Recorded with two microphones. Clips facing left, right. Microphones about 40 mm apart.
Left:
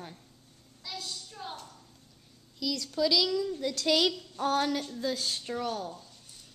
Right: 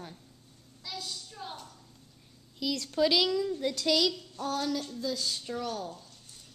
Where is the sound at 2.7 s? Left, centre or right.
Right; by 3.9 s centre.